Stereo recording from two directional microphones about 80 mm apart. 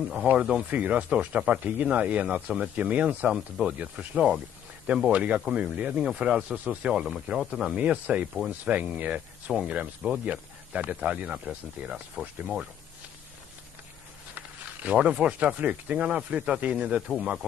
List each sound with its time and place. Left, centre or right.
0.1 s speech: centre
5.1 s speech: centre
7.7 s speech: centre
14.3 s a sound: centre
15.0 s speech: centre
17.1 s speech: centre